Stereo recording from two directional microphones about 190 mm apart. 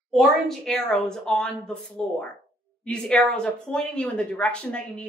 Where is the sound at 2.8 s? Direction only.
5° left (ahead or behind).